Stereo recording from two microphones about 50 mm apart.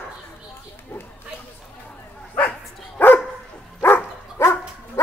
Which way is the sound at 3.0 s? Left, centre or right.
Left.